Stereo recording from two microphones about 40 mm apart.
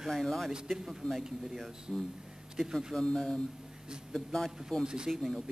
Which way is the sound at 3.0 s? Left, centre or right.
Centre.